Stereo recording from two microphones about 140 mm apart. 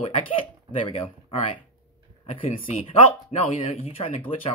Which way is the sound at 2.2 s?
45° left (ahead or behind).